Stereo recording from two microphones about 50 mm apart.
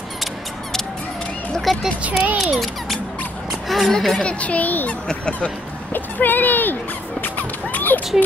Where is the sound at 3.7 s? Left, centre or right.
Centre.